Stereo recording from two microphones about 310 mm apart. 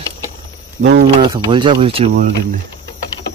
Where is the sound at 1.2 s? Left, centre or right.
Centre.